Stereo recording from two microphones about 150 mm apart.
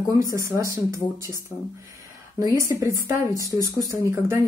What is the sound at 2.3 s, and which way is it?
A woman's voice, 20° right (ahead or behind).